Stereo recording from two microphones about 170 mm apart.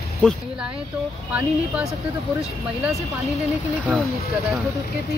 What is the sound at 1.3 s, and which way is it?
Speech, 5° right (ahead or behind).